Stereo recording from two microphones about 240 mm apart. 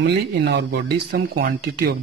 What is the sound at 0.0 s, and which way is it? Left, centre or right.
Speech, right.